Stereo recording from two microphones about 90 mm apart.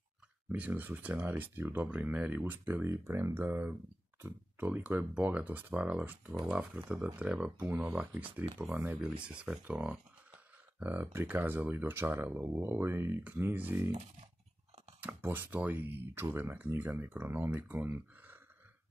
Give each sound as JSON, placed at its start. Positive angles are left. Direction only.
{"t": 0.5, "sound": "speech", "side_deg": -20}
{"t": 10.8, "sound": "speech", "side_deg": -20}
{"t": 15.0, "sound": "speech", "side_deg": -20}